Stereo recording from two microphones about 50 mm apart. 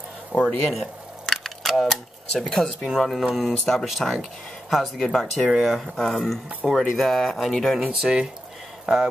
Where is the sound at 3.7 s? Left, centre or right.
Centre.